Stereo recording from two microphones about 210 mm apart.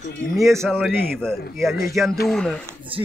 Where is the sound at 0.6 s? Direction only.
5° left (ahead or behind).